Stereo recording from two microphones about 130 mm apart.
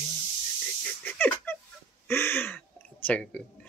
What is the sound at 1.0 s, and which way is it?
Speech, 15° left (ahead or behind).